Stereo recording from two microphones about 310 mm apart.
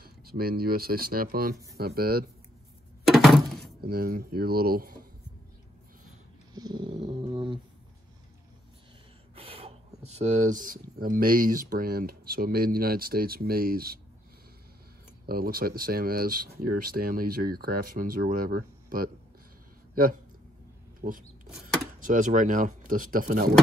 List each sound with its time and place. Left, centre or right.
0.0 s speech: right
3.1 s thunk: centre
3.8 s speech: right
6.5 s dog: centre
9.3 s speech: centre
15.2 s speech: right
21.0 s speech: right